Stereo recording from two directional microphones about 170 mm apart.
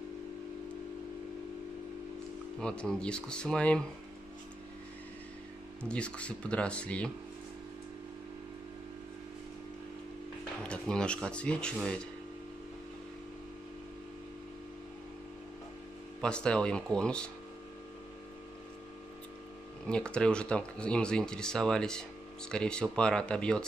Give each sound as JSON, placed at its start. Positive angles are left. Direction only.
{"t": 2.6, "sound": "speech", "side_deg": 5}
{"t": 5.8, "sound": "speech", "side_deg": 5}
{"t": 10.6, "sound": "speech", "side_deg": 5}
{"t": 16.2, "sound": "speech", "side_deg": 5}
{"t": 19.9, "sound": "speech", "side_deg": 5}